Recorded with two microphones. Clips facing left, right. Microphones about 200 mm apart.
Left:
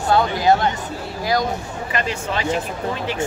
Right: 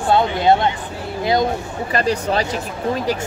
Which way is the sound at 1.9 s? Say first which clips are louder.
Right 6 dB; 35° right (ahead or behind).